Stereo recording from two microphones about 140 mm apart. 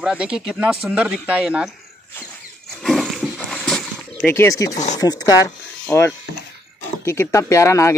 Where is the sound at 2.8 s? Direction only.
Centre (ahead or behind).